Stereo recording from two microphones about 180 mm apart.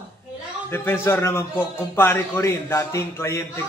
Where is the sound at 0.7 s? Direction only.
15° left (ahead or behind).